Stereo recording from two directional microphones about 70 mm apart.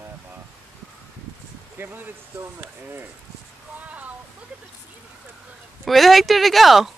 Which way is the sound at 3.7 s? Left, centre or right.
Right.